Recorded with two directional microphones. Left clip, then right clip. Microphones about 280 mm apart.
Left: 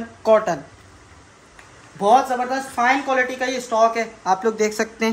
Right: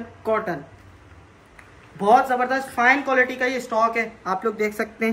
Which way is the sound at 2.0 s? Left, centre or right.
Centre.